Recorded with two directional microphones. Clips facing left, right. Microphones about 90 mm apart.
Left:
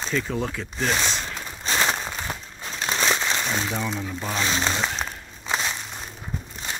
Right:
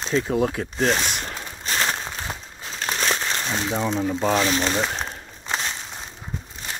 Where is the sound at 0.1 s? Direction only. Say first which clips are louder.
Right 6 dB; 30° right (ahead or behind).